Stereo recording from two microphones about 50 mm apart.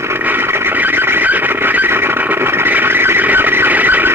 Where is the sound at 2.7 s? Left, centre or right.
Right.